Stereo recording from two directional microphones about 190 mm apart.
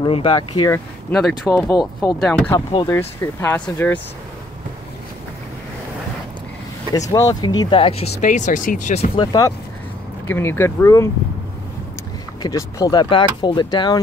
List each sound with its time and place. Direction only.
0.0 s speech: 25° left (ahead or behind)
1.1 s speech: centre (ahead or behind)
1.5 s speech: 15° left (ahead or behind)
6.9 s speech: 20° left (ahead or behind)
8.1 s speech: 45° left (ahead or behind)
9.1 s speech: 20° left (ahead or behind)
12.4 s speech: 20° left (ahead or behind)